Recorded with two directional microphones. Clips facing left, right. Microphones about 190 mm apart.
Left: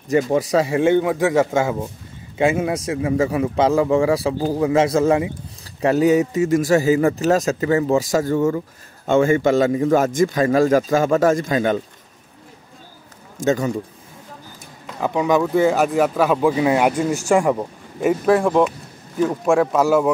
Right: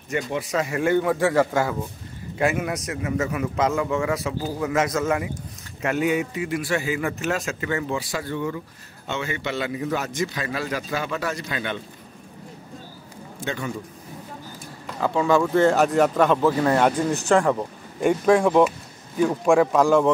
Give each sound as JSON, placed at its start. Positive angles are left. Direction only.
{"t": 0.3, "sound": "a man's voice", "side_deg": 40}
{"t": 13.4, "sound": "speech", "side_deg": 40}
{"t": 15.0, "sound": "speech", "side_deg": 15}
{"t": 18.2, "sound": "speech", "side_deg": 0}